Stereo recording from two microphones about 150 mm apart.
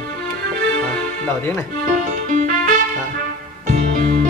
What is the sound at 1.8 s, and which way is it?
Music, 60° right (ahead or behind).